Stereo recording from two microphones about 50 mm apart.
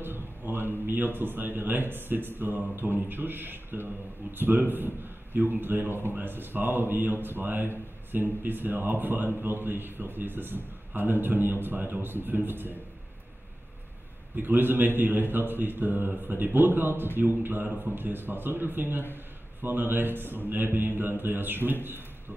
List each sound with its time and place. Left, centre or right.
0.0 s a man's voice: right
14.3 s a man's voice: right